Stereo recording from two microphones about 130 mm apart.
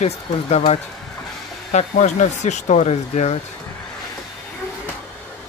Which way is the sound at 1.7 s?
65° left (ahead or behind).